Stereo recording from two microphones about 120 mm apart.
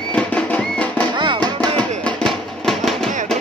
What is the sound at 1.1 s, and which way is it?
Music, 40° right (ahead or behind).